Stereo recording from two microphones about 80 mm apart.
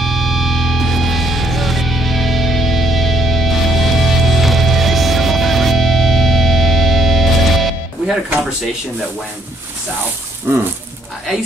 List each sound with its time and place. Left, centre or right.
0.0 s music: centre
10.5 s speech: right